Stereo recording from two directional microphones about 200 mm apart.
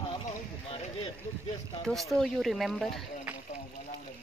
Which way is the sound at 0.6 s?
25° left (ahead or behind).